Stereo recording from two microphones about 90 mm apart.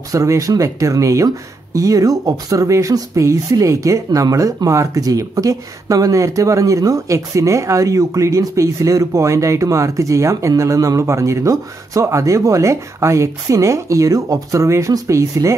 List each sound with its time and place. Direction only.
0.1 s speech: 40° right (ahead or behind)